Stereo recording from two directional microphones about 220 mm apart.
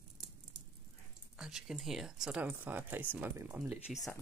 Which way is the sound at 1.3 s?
5° right (ahead or behind).